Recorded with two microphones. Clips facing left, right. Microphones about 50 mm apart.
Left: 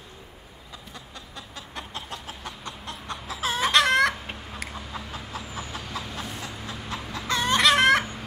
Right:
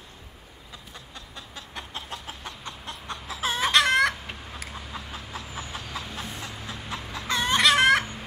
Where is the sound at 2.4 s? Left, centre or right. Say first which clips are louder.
Left 1 dB; centre.